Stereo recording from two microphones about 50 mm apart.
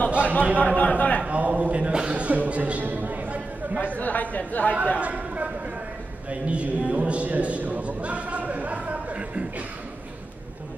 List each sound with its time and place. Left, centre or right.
0.2 s a man's voice: left
1.2 s a man's voice: right
4.0 s speech: left
5.0 s a man's voice: right